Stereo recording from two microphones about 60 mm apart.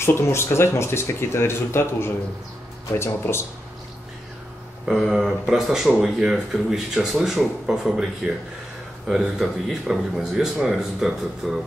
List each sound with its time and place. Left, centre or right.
0.0 s speech: left
4.8 s speech: centre